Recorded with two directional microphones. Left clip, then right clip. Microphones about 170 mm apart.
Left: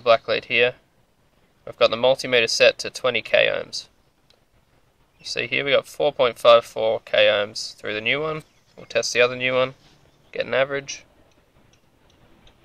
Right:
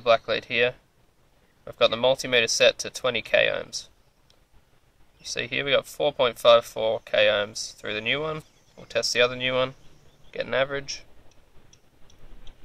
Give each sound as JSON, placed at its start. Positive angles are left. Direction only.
{"t": 0.0, "sound": "speech", "side_deg": 30}